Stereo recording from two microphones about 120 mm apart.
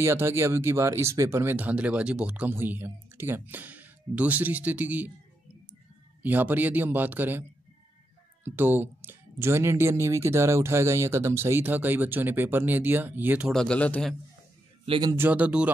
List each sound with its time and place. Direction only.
0.0 s speech: 20° right (ahead or behind)
6.2 s speech: 15° right (ahead or behind)
8.5 s speech: 15° right (ahead or behind)
13.5 s speech: 5° left (ahead or behind)
14.9 s speech: 35° right (ahead or behind)
15.1 s speech: 15° right (ahead or behind)